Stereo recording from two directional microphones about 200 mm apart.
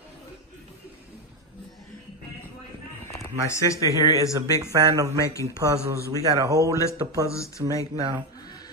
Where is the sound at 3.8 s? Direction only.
15° right (ahead or behind).